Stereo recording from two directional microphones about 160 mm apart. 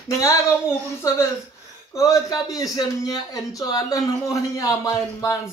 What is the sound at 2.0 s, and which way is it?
A man's voice, 20° left (ahead or behind).